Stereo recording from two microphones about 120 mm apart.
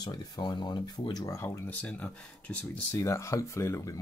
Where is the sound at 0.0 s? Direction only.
35° left (ahead or behind); by 2.8 s 10° left (ahead or behind).